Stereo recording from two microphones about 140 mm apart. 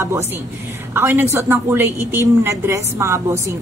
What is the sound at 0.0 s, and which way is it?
A woman's voice, 20° right (ahead or behind).